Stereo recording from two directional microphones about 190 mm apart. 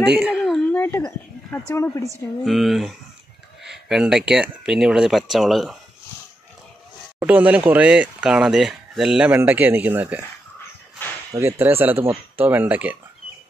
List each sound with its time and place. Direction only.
0.0 s speech: 5° right (ahead or behind)
0.7 s a sound: 10° left (ahead or behind)
1.7 s a woman's voice: 15° left (ahead or behind)
2.4 s speech: centre (ahead or behind)
7.2 s speech: 10° right (ahead or behind)
11.3 s speech: 10° right (ahead or behind)